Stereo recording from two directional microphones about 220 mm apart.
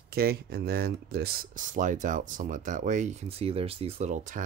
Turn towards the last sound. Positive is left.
turn(degrees=-35)  # may be behind; listen again after turning